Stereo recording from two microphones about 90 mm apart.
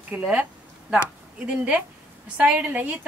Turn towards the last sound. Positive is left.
turn(degrees=-20)  # may be behind; listen again after turning